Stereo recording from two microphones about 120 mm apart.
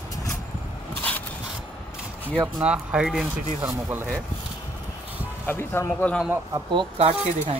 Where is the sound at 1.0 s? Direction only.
15° left (ahead or behind).